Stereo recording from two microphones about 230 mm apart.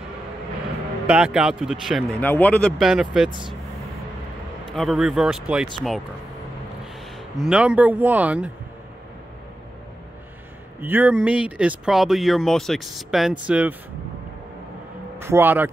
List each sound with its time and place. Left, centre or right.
1.0 s speech: centre
3.3 s speech: right
4.7 s speech: centre
7.3 s speech: centre
10.8 s speech: centre
15.1 s speech: centre